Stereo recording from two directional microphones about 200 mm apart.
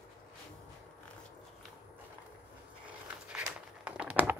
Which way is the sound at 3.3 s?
5° right (ahead or behind).